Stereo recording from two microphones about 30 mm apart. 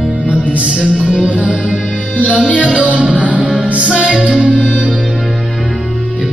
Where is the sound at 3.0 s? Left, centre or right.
Right.